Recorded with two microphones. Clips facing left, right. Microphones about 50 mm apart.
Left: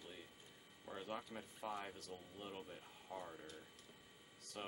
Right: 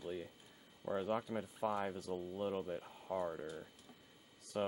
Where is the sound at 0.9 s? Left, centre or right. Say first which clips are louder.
Right 10 dB; right.